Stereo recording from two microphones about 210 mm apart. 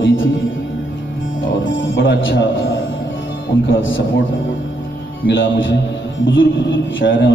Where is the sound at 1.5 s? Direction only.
65° left (ahead or behind).